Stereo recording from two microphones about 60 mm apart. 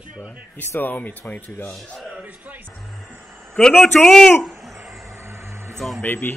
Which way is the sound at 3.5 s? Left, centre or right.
Centre.